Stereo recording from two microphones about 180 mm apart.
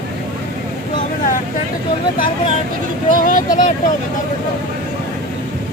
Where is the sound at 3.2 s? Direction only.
45° left (ahead or behind).